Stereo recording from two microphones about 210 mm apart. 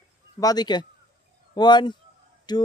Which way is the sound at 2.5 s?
20° left (ahead or behind).